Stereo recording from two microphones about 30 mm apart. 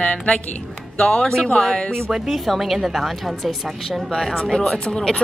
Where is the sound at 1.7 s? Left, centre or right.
Left.